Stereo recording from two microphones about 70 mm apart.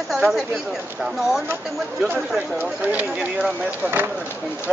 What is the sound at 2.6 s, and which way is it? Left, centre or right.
Speech, right.